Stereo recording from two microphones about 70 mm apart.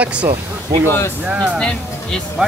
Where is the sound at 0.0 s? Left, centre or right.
Centre.